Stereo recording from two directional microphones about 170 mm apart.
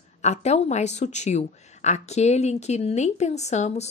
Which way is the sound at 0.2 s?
40° left (ahead or behind).